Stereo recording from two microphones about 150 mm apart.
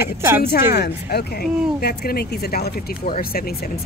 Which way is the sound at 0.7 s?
90° left.